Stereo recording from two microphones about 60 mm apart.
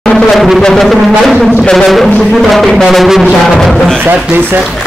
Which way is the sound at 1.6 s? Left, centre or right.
Centre.